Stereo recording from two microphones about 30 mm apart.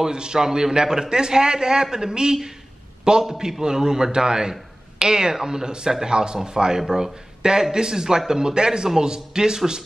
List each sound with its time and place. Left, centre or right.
0.0 s a man's voice: right